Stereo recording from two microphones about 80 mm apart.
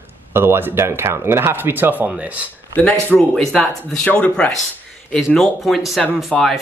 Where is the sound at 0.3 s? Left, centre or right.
Right.